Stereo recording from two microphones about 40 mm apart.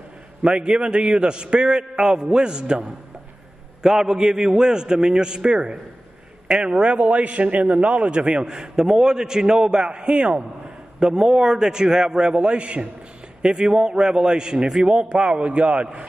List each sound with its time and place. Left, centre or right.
0.4 s a man's voice: right